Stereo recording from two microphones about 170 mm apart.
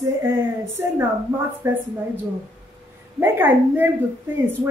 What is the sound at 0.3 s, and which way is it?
A woman's voice, 15° right (ahead or behind).